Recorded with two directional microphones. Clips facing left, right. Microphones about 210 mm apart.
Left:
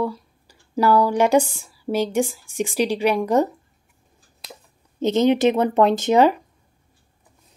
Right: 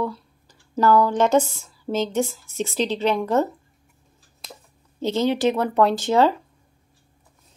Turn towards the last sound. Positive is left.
turn(degrees=20)  # may be behind; listen again after turning